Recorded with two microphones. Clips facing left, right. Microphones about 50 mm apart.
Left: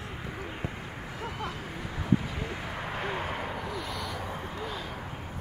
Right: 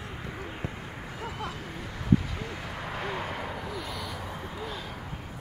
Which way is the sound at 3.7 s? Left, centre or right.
Centre.